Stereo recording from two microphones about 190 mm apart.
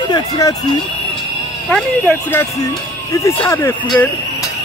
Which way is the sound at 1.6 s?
5° left (ahead or behind).